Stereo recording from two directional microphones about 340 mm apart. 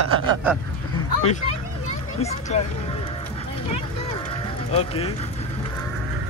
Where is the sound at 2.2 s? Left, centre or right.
Centre.